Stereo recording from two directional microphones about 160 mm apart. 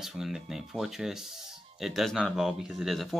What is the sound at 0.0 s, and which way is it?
Speech, centre (ahead or behind).